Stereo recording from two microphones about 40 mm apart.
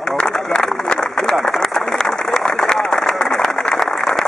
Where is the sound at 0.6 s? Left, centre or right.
Centre.